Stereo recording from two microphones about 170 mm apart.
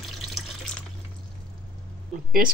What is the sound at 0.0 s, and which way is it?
Water, centre (ahead or behind).